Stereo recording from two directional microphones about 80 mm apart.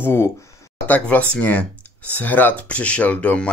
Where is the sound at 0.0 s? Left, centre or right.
Left.